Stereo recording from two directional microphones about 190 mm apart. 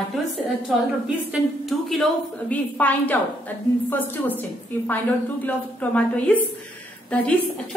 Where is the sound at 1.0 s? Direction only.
5° right (ahead or behind).